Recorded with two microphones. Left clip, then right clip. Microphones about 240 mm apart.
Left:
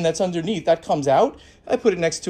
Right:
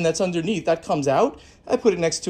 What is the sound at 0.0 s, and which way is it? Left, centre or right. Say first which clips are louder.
Speech: even; centre.